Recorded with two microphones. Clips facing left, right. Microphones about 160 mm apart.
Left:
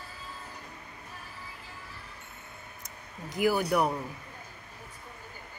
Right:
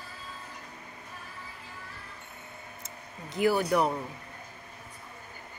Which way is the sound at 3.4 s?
10° left (ahead or behind).